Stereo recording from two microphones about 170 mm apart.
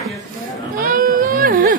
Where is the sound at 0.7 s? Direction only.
55° right (ahead or behind).